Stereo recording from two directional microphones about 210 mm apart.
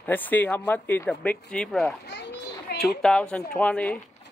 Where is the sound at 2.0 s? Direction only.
55° left (ahead or behind).